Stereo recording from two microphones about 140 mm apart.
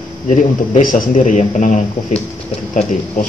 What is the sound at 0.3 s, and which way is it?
A man's voice, 70° left (ahead or behind).